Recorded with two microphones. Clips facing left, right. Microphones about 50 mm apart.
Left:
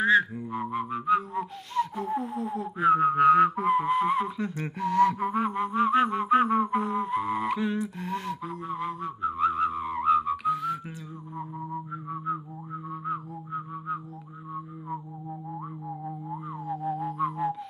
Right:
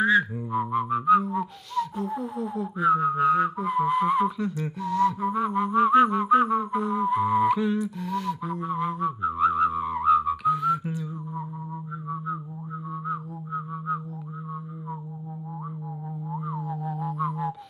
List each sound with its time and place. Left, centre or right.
0.0 s a sound: centre
1.8 s owl: left
2.2 s speech: centre
2.8 s whistling: left
3.7 s speech: centre
4.7 s whistling: left
5.5 s speech: centre
6.2 s music: left
7.1 s music: centre
8.0 s a sound: left
8.5 s whistling: centre
13.0 s music: left
16.4 s music: centre